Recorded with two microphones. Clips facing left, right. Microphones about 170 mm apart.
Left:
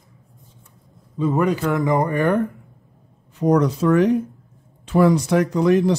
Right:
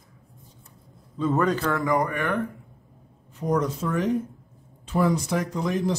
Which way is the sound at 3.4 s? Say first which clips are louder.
Left 8 dB; 80° left.